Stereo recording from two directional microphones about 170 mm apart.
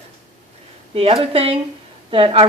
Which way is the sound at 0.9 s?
35° right (ahead or behind).